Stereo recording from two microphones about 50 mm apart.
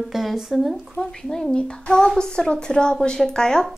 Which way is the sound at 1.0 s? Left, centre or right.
Centre.